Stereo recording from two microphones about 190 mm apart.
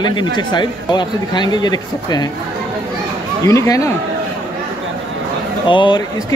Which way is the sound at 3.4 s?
15° left (ahead or behind).